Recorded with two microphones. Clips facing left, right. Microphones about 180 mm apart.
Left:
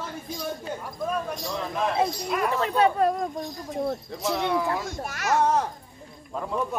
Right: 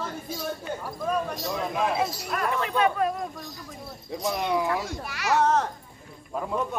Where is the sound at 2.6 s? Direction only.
35° left (ahead or behind).